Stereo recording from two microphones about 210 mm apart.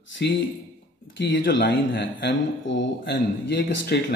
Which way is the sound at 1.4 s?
55° left (ahead or behind).